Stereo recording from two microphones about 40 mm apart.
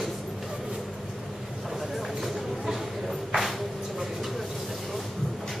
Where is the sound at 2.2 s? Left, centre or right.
Centre.